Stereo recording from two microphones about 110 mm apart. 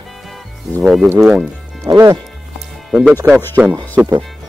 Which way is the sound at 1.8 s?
30° right (ahead or behind).